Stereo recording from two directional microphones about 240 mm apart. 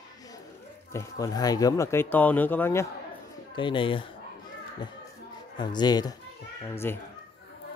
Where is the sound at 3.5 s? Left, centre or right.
Centre.